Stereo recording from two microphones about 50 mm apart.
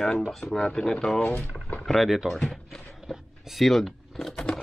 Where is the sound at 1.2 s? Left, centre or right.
Left.